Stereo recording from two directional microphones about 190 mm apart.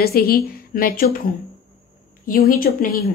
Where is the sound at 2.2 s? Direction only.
45° left (ahead or behind).